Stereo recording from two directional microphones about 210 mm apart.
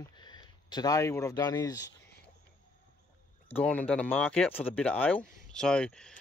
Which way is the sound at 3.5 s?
5° left (ahead or behind).